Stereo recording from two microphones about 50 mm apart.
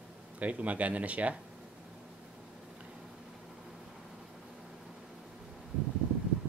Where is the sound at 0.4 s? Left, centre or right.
Right.